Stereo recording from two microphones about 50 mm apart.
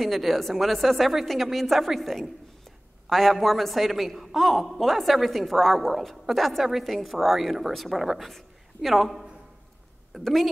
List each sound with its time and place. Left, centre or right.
0.0 s speech: centre